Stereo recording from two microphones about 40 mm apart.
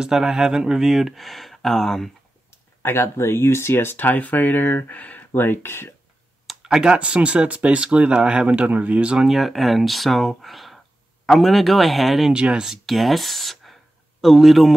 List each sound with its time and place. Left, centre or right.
0.0 s speech: centre
2.8 s speech: left
4.0 s speech: left
6.6 s speech: centre
7.0 s speech: right
9.3 s speech: centre
12.4 s speech: right
12.6 s speech: centre